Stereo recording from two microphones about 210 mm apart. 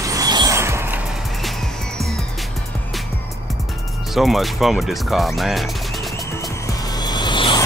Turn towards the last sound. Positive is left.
turn(degrees=20)  # may be behind; listen again after turning